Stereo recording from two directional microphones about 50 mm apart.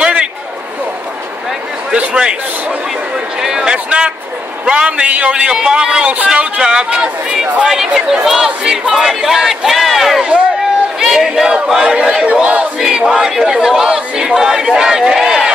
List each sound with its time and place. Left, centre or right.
0.0 s a sound: centre
1.9 s a man's voice: centre
3.3 s speech: centre
7.6 s speech: centre
12.7 s speech: centre